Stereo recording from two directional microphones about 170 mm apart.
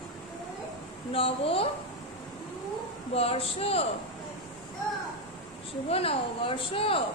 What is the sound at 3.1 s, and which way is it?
Speech, 35° left (ahead or behind).